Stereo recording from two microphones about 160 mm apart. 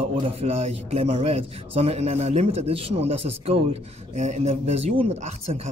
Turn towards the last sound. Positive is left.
turn(degrees=-40)  # may be behind; listen again after turning